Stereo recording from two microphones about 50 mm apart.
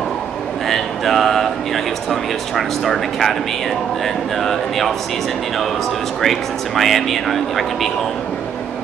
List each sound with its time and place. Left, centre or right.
0.7 s a sound: centre
2.0 s speech: centre
6.2 s speech: centre